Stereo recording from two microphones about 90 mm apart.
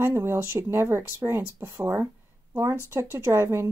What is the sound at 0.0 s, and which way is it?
Speech, 25° right (ahead or behind).